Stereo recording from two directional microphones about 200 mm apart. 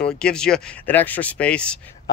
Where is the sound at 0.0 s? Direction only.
5° left (ahead or behind).